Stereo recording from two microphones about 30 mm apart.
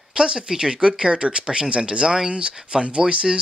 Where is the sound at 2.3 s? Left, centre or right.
Right.